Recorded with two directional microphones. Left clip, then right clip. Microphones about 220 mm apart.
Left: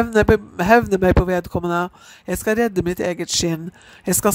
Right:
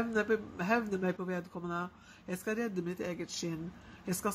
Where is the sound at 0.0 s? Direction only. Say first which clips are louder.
Left 16 dB; 50° left (ahead or behind).